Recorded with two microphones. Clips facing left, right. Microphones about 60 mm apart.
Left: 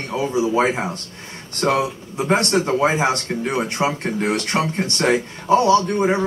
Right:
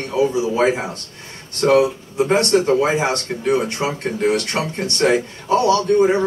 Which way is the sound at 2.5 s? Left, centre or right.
Centre.